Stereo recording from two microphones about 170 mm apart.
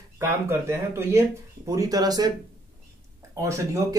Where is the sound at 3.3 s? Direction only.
20° right (ahead or behind).